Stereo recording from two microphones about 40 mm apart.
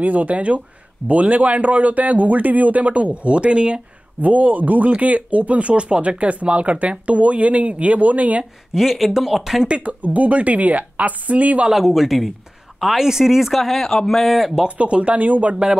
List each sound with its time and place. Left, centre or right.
0.0 s speech: right
4.2 s speech: right
8.7 s speech: centre
9.7 s speech: right
11.7 s speech: centre
13.5 s speech: centre
14.8 s speech: right